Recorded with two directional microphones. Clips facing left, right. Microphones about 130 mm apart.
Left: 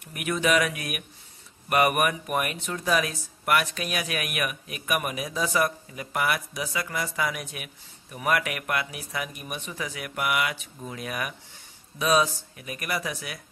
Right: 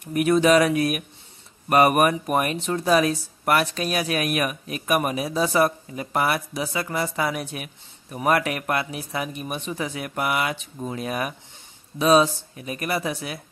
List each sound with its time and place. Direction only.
0.1 s speech: 35° right (ahead or behind)